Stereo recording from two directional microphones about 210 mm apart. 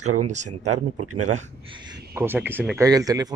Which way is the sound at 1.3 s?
25° right (ahead or behind).